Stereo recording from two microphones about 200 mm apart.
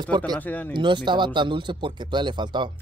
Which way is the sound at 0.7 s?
25° right (ahead or behind).